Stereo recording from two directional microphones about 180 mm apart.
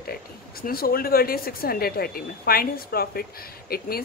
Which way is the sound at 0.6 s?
55° left (ahead or behind).